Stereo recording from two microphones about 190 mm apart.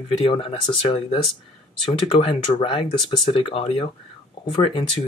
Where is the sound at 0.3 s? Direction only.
30° left (ahead or behind).